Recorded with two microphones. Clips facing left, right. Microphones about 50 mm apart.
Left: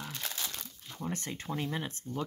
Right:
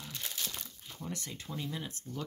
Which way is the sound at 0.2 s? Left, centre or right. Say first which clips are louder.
Even; left.